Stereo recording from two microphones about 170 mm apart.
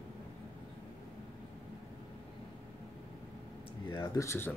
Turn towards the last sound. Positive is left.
turn(degrees=15)  # may be behind; listen again after turning